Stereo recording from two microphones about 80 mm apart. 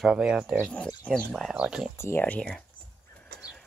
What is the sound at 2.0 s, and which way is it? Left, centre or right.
Speech, left.